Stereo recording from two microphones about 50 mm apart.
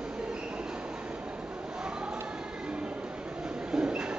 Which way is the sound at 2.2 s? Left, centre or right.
Centre.